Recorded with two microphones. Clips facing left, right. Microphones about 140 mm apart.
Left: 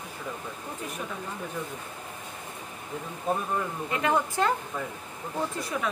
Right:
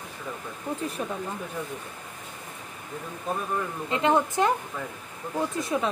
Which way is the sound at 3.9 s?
20° right (ahead or behind).